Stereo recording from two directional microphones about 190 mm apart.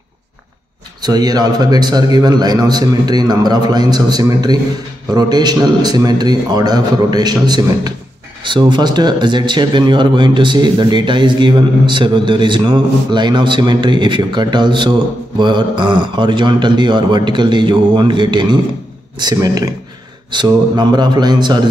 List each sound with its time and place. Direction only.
1.0 s speech: 20° right (ahead or behind)